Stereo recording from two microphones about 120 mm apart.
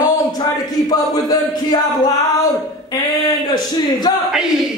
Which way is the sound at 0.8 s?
30° left (ahead or behind).